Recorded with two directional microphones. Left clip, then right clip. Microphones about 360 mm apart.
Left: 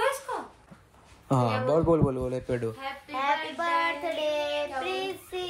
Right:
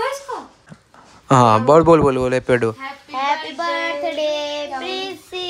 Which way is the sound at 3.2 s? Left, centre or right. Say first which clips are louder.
Right 7 dB; right.